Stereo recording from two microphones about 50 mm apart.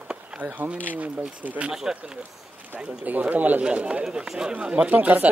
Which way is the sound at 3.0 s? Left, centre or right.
Right.